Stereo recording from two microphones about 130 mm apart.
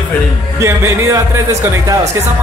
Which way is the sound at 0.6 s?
25° right (ahead or behind).